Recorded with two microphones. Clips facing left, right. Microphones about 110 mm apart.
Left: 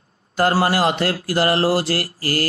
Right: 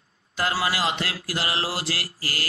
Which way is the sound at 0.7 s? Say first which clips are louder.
Left 8 dB; 60° left (ahead or behind).